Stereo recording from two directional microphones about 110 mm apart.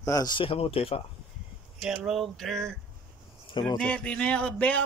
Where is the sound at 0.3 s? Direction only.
55° left (ahead or behind).